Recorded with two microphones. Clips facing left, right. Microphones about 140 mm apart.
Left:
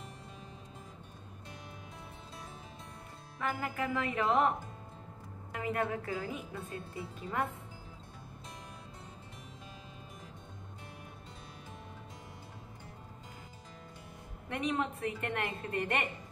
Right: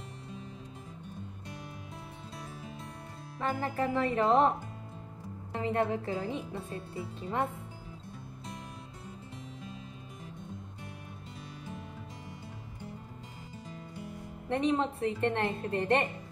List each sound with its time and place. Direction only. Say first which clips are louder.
3.3 s a woman's voice: right 4 dB; 30° right (ahead or behind)
14.5 s a woman's voice: right 5 dB; 30° right (ahead or behind)